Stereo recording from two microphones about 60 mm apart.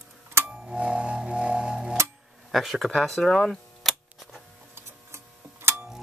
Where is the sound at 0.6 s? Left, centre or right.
Centre.